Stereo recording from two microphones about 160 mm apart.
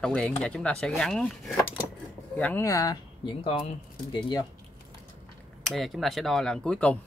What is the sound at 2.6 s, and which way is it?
Speech, 20° left (ahead or behind).